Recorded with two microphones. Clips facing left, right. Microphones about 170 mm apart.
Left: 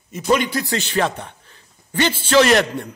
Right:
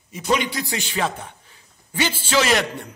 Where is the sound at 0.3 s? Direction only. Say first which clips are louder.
Left 4 dB; 55° left (ahead or behind).